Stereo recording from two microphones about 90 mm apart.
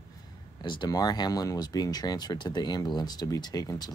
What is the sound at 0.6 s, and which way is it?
Speech, 55° left (ahead or behind).